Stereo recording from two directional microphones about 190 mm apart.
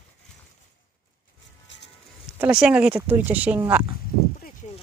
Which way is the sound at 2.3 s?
5° right (ahead or behind).